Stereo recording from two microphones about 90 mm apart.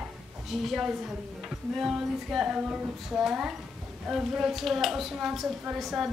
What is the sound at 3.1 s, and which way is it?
A woman's voice, 5° right (ahead or behind).